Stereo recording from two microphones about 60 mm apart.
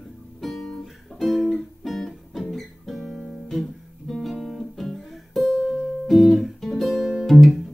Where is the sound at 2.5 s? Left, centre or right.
Centre.